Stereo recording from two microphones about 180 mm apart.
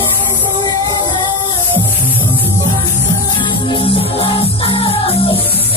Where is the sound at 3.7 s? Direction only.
30° left (ahead or behind).